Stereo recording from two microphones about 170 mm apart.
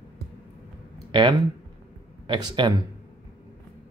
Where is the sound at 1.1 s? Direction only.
25° right (ahead or behind).